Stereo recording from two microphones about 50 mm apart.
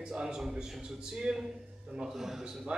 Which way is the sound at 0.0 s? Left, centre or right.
Centre.